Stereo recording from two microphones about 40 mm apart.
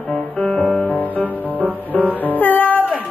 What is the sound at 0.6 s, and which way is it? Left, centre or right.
Music, right.